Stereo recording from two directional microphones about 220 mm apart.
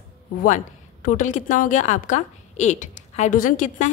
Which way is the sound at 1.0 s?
35° left (ahead or behind).